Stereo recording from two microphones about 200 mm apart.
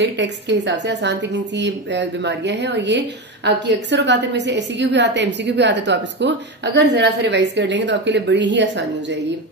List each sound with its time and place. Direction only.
0.0 s a woman's voice: 60° right (ahead or behind)